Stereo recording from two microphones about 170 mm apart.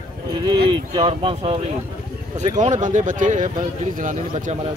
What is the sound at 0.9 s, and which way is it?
Speech, 35° right (ahead or behind).